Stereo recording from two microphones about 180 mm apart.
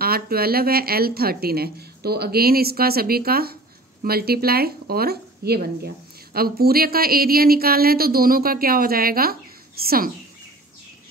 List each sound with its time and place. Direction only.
0.0 s speech: 55° right (ahead or behind)